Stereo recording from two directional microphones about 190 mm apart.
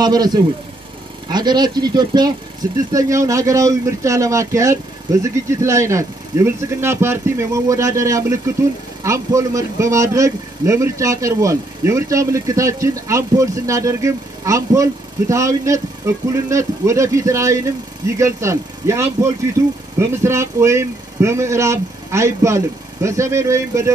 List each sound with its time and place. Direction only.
0.0 s a man's voice: 20° right (ahead or behind)